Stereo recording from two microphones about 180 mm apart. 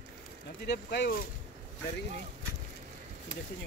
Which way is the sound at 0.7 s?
70° left (ahead or behind).